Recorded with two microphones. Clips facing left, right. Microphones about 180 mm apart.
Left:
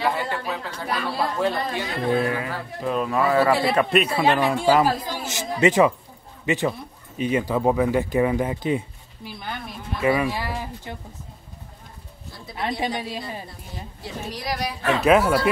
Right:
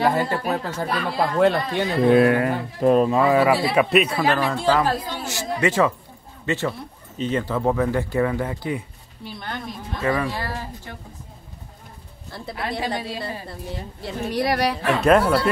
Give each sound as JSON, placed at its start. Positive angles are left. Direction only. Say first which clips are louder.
{"t": 0.0, "sound": "speech", "louder": "right 4 dB", "side_deg": -45}
{"t": 1.4, "sound": "speech", "louder": "right 5 dB", "side_deg": -65}
{"t": 2.8, "sound": "speech", "louder": "right 9 dB", "side_deg": -45}
{"t": 3.1, "sound": "speech", "louder": "right 2 dB", "side_deg": -20}
{"t": 4.2, "sound": "speech", "louder": "left 1 dB", "side_deg": 20}
{"t": 9.2, "sound": "speech", "louder": "right 2 dB", "side_deg": 5}
{"t": 12.5, "sound": "a woman's voice", "louder": "left 1 dB", "side_deg": 20}
{"t": 14.0, "sound": "speech", "louder": "right 7 dB", "side_deg": -60}
{"t": 14.9, "sound": "speech", "louder": "even", "side_deg": 0}